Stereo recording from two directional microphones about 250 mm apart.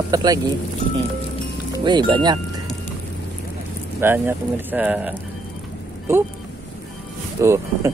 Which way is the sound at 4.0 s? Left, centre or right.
Centre.